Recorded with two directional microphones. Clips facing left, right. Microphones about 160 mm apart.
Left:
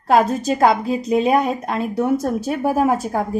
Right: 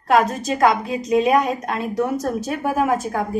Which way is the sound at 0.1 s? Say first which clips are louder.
Left 2 dB; 30° left (ahead or behind).